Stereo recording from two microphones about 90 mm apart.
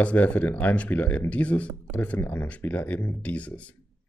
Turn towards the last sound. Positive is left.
turn(degrees=15)  # may be behind; listen again after turning